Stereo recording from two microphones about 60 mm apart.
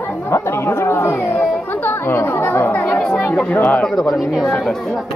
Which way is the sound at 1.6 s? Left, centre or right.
Left.